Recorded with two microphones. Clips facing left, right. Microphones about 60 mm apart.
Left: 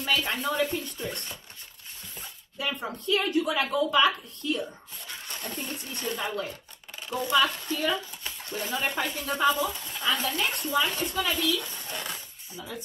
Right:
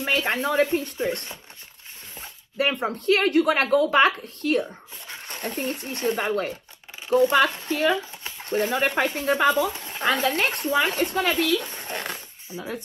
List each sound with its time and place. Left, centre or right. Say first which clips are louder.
0.0 s speech: right 4 dB; right
2.5 s speech: right 8 dB; right
5.0 s a sound: right 2 dB; right
5.4 s speech: right 9 dB; right
7.1 s speech: right 6 dB; right
12.5 s speech: right 7 dB; right